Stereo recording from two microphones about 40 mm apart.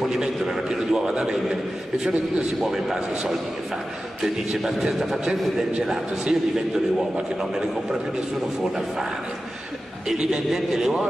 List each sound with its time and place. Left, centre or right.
0.1 s a sound: centre
2.6 s a man's voice: centre
10.0 s a man's voice: centre